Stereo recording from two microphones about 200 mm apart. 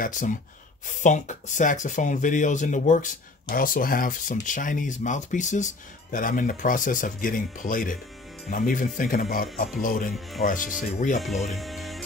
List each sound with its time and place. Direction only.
0.0 s speech: 40° left (ahead or behind)
11.1 s speech: centre (ahead or behind)
11.5 s music: centre (ahead or behind)